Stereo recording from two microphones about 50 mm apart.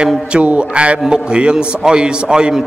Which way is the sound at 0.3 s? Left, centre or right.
Right.